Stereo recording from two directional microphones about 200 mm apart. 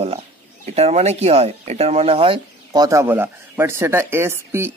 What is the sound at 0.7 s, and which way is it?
Speech, 30° right (ahead or behind).